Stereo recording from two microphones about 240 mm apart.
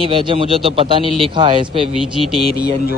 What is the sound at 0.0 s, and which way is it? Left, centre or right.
Speech, right.